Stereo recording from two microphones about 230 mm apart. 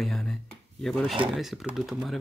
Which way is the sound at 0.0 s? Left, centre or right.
Centre.